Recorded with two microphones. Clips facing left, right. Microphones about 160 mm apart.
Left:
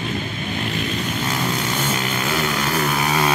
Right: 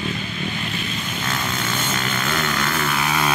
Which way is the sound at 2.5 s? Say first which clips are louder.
Left 2 dB; 35° left (ahead or behind).